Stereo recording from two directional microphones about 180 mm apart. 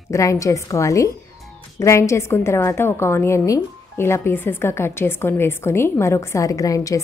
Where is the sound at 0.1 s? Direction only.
15° left (ahead or behind).